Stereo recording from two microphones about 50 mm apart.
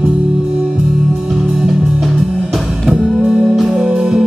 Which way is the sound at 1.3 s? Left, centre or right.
Centre.